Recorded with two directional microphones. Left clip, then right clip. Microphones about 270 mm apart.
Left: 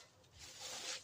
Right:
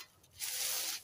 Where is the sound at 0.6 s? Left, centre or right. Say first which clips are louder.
Right 6 dB; right.